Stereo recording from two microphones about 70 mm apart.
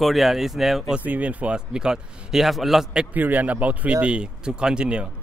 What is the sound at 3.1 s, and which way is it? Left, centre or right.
A man's voice, right.